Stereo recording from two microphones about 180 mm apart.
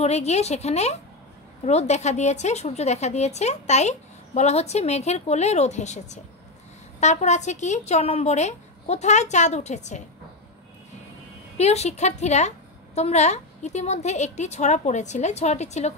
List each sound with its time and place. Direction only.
0.0 s a woman's voice: 40° left (ahead or behind)
11.5 s a woman's voice: 35° left (ahead or behind)